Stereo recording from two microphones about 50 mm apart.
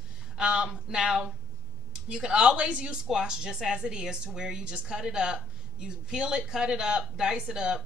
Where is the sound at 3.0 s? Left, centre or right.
Centre.